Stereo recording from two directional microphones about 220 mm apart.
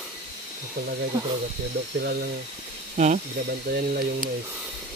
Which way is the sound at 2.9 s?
35° right (ahead or behind).